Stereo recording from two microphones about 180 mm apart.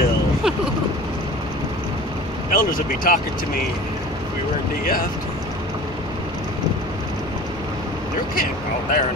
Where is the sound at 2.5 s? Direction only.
50° left (ahead or behind).